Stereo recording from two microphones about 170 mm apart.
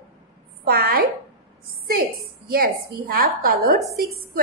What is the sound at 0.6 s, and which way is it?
A woman's voice, 65° right (ahead or behind).